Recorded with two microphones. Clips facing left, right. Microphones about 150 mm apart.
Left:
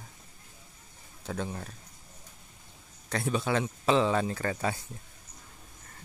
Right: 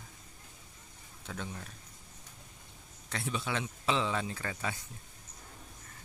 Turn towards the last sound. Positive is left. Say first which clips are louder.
# left 7 dB
turn(degrees=45)  # may be behind; listen again after turning